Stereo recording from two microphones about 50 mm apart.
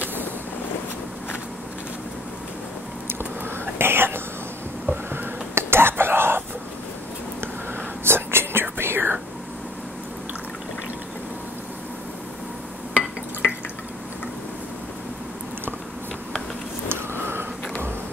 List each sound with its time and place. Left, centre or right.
3.6 s speech: right
5.1 s whispering: right
8.0 s whispering: right
13.4 s drip: left
16.9 s a sound: right